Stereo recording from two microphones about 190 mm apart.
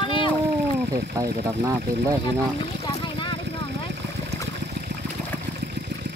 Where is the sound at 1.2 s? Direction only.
15° right (ahead or behind).